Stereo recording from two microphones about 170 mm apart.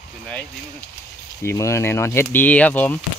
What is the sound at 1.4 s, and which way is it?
Speech, 15° left (ahead or behind).